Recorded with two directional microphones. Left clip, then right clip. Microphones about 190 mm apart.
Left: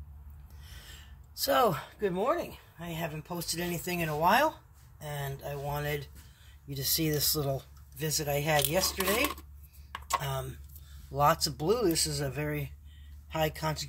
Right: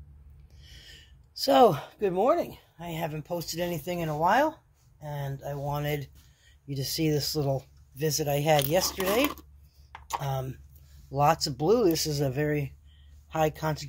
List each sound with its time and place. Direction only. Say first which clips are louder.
0.7 s a sound: right 1 dB; 30° right (ahead or behind)
1.6 s speech: right 9 dB; 50° right (ahead or behind)
6.7 s speech: right 3 dB; 20° right (ahead or behind)
8.2 s speech: right 4 dB; 40° right (ahead or behind)
10.2 s speech: right 3 dB; 25° right (ahead or behind)